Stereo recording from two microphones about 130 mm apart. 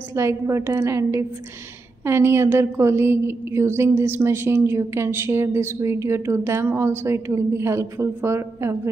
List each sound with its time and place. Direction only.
0.1 s a woman's voice: 20° right (ahead or behind)